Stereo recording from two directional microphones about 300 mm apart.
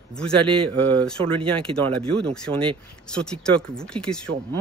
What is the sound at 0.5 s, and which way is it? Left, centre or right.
Speech, centre.